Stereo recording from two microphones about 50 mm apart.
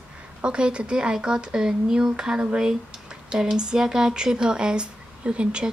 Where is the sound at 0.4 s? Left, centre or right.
Centre.